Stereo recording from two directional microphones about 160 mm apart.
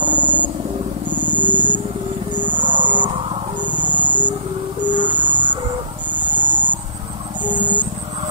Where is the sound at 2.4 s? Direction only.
30° right (ahead or behind).